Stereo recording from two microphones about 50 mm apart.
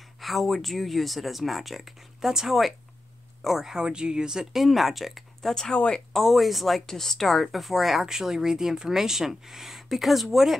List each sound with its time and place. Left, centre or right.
0.2 s speech: centre
5.5 s speech: centre
6.1 s speech: centre